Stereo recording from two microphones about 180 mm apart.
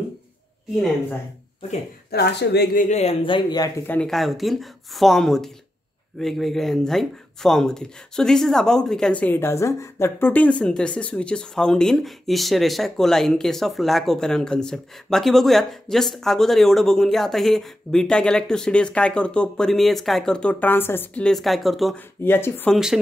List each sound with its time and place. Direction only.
2.0 s speech: 65° left (ahead or behind)
2.9 s speech: 35° left (ahead or behind); by 22.0 s centre (ahead or behind)
22.2 s speech: 10° left (ahead or behind)